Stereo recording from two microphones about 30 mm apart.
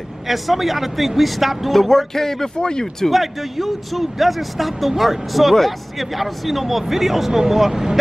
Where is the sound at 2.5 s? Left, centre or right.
Left.